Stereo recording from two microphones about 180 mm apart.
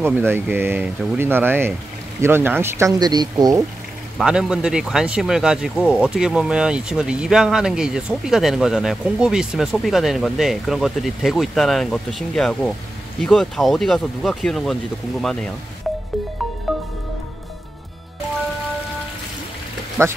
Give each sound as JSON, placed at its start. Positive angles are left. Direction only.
{"t": 0.0, "sound": "speech", "side_deg": -10}
{"t": 4.2, "sound": "speech", "side_deg": -5}
{"t": 16.7, "sound": "music", "side_deg": 0}
{"t": 20.0, "sound": "speech", "side_deg": -15}